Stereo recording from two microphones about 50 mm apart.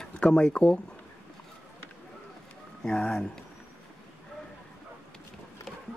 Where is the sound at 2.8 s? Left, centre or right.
Centre.